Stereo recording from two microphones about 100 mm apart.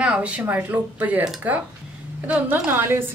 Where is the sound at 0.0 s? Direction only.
10° right (ahead or behind).